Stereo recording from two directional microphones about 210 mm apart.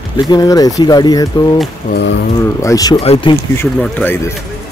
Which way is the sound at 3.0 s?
25° left (ahead or behind).